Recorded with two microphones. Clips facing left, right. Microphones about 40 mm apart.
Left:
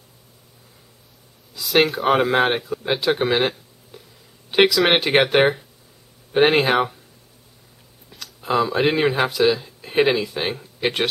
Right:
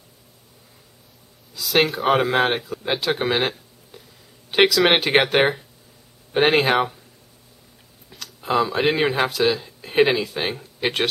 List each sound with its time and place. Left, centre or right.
1.5 s speech: centre
8.1 s speech: centre